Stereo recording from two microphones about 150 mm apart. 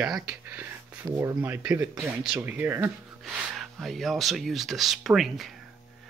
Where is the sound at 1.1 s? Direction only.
15° right (ahead or behind).